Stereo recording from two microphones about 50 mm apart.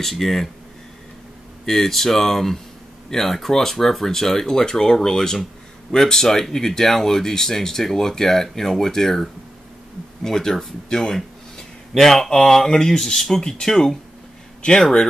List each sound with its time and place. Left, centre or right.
0.0 s speech: centre
1.7 s speech: centre